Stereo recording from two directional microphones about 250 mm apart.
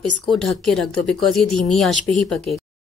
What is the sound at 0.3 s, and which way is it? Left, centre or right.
Speech, centre.